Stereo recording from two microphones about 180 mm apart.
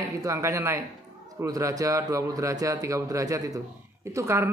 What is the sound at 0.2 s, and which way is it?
A man's voice, 15° right (ahead or behind).